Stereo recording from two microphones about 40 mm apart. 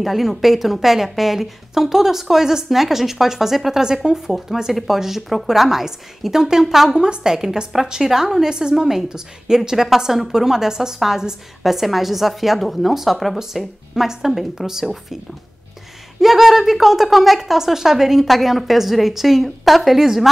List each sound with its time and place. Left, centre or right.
0.0 s a woman's voice: centre
16.2 s a woman's voice: centre